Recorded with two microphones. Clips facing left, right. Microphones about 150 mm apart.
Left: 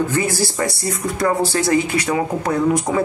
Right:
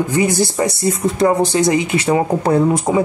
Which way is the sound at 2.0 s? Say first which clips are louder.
Right 5 dB; 30° right (ahead or behind).